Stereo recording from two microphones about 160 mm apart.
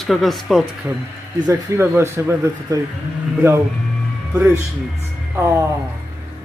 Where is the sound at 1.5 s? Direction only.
15° right (ahead or behind).